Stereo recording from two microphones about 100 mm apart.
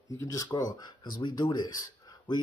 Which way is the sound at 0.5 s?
45° left (ahead or behind).